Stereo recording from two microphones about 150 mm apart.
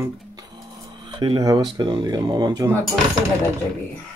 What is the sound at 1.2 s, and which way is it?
Speech, 30° right (ahead or behind).